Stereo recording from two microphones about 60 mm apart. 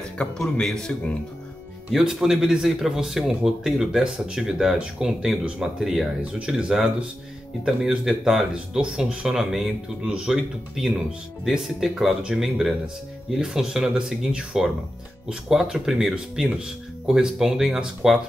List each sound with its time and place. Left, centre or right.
0.4 s a man's voice: centre
1.9 s speech: centre